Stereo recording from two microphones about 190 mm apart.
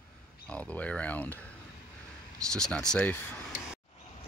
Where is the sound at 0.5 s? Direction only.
5° left (ahead or behind).